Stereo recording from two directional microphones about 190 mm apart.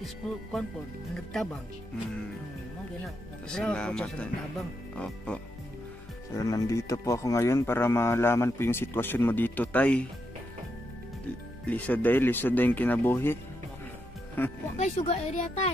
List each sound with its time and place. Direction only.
0.0 s speech: centre (ahead or behind)
3.4 s speech: 5° left (ahead or behind)
6.3 s speech: 20° left (ahead or behind)
11.6 s speech: 10° left (ahead or behind)
14.8 s a woman's voice: 35° left (ahead or behind)